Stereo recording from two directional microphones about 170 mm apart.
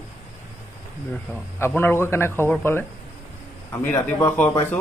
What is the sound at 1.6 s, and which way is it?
Speech, 10° left (ahead or behind).